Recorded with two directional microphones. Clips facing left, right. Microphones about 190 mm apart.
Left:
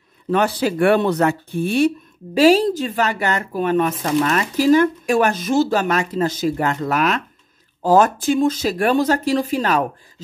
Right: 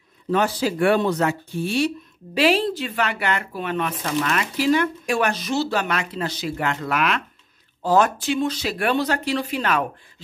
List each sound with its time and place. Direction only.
0.3 s speech: 60° left (ahead or behind)
2.3 s a woman's voice: 40° left (ahead or behind)